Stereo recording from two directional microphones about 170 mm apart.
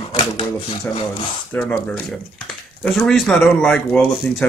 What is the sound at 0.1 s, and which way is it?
Speech, 35° left (ahead or behind).